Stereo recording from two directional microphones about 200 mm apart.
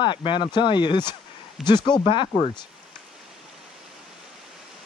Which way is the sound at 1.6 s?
Centre (ahead or behind).